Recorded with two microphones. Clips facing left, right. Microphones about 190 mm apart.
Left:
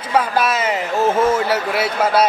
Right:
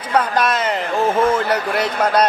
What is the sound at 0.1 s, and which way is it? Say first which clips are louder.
A man's voice: even; 5° left (ahead or behind).